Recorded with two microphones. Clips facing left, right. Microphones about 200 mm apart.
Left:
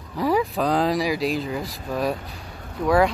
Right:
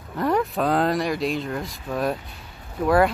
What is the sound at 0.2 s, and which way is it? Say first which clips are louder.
Speech: left 1 dB; centre (ahead or behind).